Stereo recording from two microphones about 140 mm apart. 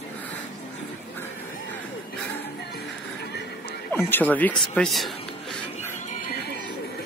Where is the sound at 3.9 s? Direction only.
15° left (ahead or behind).